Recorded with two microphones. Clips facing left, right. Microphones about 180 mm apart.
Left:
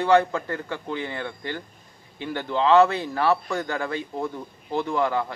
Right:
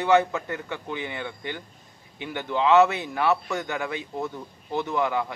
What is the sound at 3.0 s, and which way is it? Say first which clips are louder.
A man's voice: left 1 dB; 5° right (ahead or behind).